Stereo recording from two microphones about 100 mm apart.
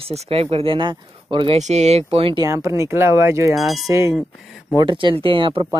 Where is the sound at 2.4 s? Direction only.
30° right (ahead or behind).